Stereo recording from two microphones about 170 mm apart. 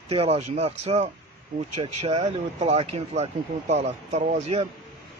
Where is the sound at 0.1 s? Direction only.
35° right (ahead or behind).